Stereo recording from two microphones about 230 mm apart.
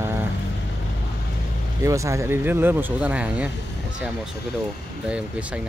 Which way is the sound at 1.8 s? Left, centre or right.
Centre.